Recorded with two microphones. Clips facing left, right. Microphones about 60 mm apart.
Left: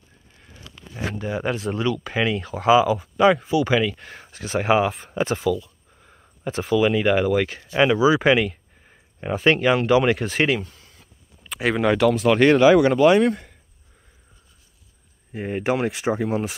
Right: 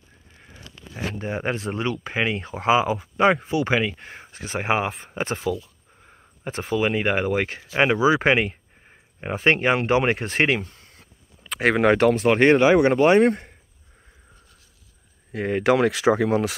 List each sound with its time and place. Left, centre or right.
1.1 s speech: right
6.7 s speech: right
12.8 s speech: right
15.3 s speech: right